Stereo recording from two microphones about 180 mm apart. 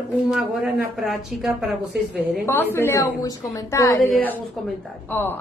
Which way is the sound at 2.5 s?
15° left (ahead or behind).